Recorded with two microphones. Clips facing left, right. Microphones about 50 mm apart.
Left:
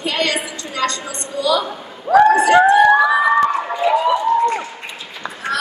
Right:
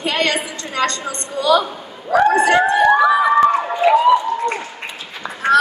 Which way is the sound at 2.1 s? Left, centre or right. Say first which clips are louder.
Left 3 dB; right.